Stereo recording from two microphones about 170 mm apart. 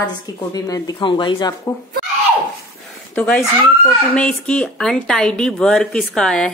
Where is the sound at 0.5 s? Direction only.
20° left (ahead or behind).